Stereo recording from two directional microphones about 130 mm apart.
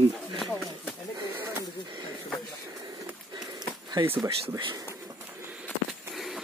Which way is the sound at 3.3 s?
30° right (ahead or behind).